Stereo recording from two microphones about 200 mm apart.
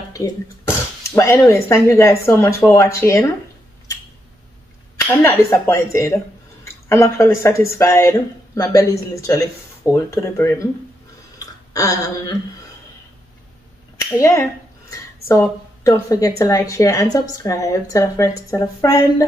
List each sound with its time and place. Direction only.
0.1 s speech: 15° left (ahead or behind)
5.5 s a woman's voice: 15° left (ahead or behind)
11.3 s a sound: 15° left (ahead or behind)
13.9 s a woman's voice: 15° left (ahead or behind)